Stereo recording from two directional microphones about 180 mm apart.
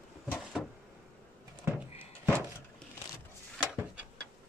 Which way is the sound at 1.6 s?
10° right (ahead or behind).